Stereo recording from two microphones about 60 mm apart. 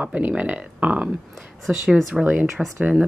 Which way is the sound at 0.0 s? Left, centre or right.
Right.